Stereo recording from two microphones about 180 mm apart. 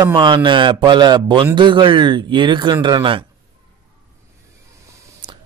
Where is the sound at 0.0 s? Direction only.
25° right (ahead or behind).